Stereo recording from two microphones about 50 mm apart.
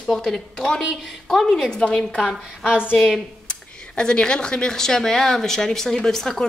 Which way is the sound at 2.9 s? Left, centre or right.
Centre.